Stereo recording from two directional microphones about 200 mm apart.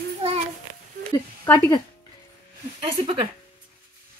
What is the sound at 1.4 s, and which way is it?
Speech, 10° left (ahead or behind).